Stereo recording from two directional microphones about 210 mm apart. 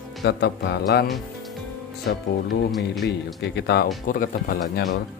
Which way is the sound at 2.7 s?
Centre (ahead or behind).